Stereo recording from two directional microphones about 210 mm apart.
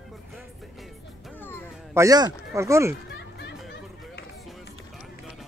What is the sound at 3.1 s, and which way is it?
Chatter, 55° left (ahead or behind).